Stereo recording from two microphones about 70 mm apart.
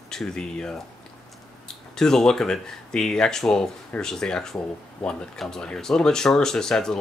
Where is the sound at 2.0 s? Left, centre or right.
Centre.